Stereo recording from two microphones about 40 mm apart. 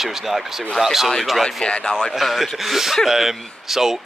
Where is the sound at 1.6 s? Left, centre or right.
Left.